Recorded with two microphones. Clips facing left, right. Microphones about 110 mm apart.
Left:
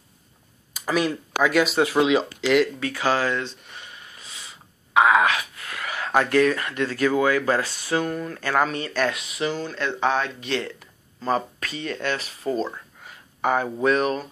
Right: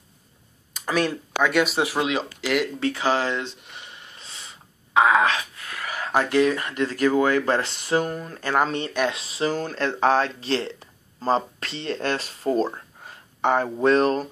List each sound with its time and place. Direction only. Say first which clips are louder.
0.7 s speech: even; 5° left (ahead or behind)
2.8 s speech: even; 20° right (ahead or behind)
6.1 s speech: left 1 dB; 15° right (ahead or behind)
7.2 s speech: even; 40° right (ahead or behind)
7.5 s speech: right 1 dB; 25° right (ahead or behind)